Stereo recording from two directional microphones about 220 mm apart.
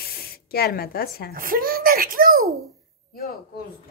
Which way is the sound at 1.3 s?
40° right (ahead or behind).